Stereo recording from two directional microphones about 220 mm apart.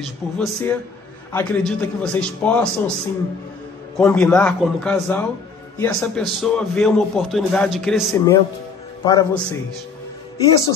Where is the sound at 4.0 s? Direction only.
5° left (ahead or behind).